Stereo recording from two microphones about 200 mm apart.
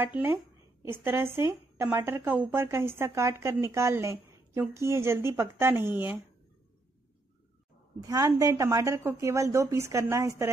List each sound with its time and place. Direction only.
0.0 s a woman's voice: 10° right (ahead or behind)
8.0 s a woman's voice: 15° right (ahead or behind)